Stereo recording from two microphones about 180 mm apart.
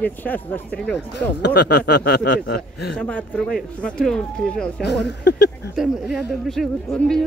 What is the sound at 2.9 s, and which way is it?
Speech, 10° left (ahead or behind).